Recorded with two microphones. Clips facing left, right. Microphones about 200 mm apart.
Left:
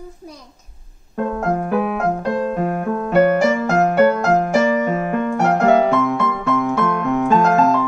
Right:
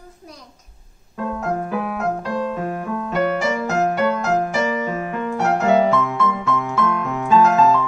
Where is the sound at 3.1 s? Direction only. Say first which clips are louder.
Left 7 dB; 55° left (ahead or behind).